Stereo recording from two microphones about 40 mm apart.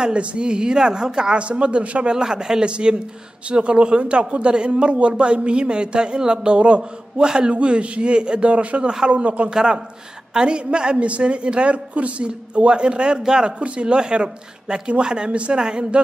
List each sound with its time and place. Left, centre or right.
0.0 s a woman's voice: right
1.4 s a man's voice: right
2.0 s a woman's voice: right
9.5 s a man's voice: centre